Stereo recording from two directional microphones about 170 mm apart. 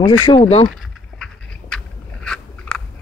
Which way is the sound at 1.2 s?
5° left (ahead or behind).